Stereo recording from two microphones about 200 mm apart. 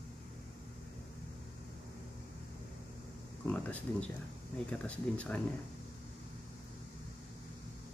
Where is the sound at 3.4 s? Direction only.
5° left (ahead or behind).